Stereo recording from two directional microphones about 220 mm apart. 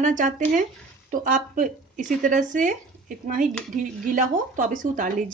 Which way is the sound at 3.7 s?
35° right (ahead or behind).